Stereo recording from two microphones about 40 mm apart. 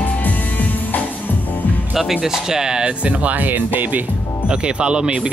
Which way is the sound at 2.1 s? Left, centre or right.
Centre.